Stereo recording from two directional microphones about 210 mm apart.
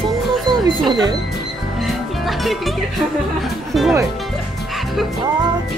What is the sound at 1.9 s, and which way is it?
Music, centre (ahead or behind).